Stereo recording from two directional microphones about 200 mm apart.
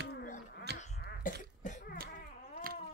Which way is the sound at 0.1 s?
45° left (ahead or behind).